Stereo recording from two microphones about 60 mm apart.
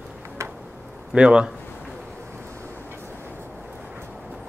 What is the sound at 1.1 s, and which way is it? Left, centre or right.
Speech, centre.